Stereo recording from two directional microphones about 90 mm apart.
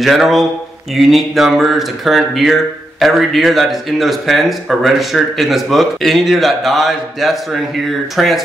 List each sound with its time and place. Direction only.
0.0 s speech: centre (ahead or behind)